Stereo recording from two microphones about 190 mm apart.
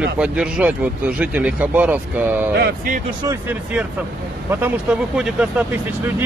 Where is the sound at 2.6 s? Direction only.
55° right (ahead or behind).